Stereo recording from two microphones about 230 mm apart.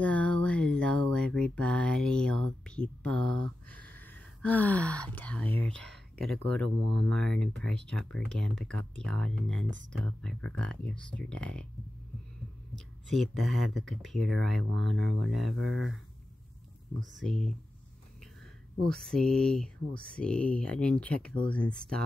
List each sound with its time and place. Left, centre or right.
0.0 s a sound: centre
3.8 s speech: centre
9.7 s speech: right
10.2 s speech: centre
12.7 s speech: centre
15.0 s speech: right
17.2 s speech: centre
18.9 s speech: centre